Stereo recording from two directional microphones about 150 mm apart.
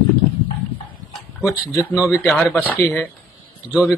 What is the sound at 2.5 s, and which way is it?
Speech, 10° left (ahead or behind).